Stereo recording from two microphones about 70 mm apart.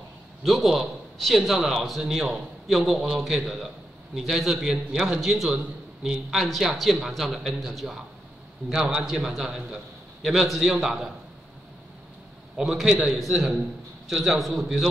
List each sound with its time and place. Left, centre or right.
0.4 s a man's voice: centre
12.5 s a man's voice: centre